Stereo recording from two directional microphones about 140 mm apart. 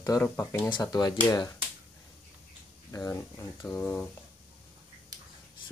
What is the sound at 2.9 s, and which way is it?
Speech, 20° left (ahead or behind).